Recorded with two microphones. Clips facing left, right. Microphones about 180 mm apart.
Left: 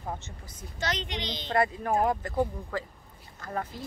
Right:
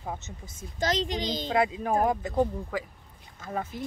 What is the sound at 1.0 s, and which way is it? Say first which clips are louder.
Speech: right 5 dB; 45° right (ahead or behind).